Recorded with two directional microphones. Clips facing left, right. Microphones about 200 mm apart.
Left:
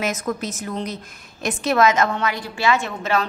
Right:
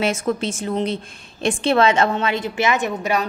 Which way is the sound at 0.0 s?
30° right (ahead or behind).